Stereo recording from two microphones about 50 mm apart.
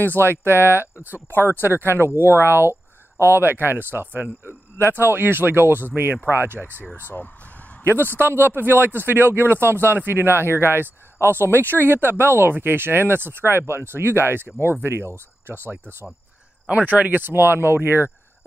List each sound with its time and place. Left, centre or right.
0.2 s speech: right
1.3 s speech: left
1.6 s speech: right
2.1 s speech: left
2.4 s speech: right
7.8 s a man's voice: right
16.7 s speech: right